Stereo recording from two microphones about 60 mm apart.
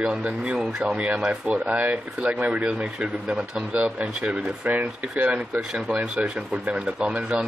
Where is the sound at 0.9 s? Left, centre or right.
Right.